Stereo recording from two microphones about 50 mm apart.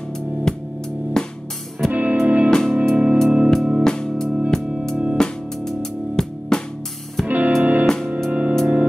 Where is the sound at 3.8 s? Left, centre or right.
Centre.